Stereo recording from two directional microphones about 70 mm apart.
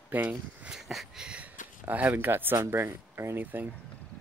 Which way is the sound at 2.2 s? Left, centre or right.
Right.